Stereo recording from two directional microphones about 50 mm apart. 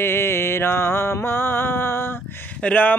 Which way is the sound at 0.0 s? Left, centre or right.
Left.